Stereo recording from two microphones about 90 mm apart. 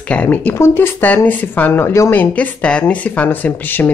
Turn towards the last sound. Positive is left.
turn(degrees=20)  # may be behind; listen again after turning